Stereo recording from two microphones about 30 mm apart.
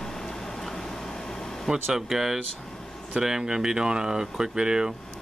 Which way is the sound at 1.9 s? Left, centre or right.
Centre.